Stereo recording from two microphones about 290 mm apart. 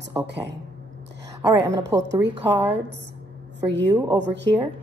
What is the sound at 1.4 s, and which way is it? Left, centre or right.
A woman's voice, centre.